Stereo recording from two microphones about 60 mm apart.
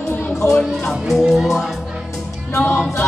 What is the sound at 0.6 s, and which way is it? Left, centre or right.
Music, centre.